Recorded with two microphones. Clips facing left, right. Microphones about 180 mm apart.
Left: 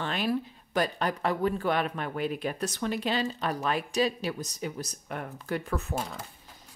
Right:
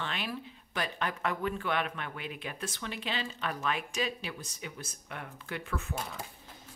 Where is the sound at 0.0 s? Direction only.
40° left (ahead or behind).